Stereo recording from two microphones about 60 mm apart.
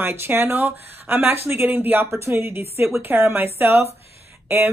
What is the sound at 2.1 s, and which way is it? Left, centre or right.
Speech, right.